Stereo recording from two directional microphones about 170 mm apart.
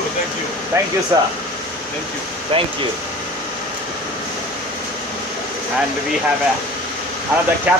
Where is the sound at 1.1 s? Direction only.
20° right (ahead or behind).